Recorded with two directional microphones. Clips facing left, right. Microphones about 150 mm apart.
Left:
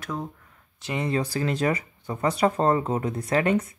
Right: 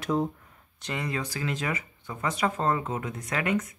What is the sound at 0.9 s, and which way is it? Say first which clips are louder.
Speech: left 6 dB; 30° left (ahead or behind).